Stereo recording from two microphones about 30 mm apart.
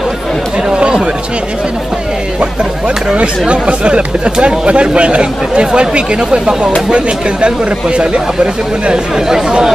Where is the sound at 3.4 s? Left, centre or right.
Right.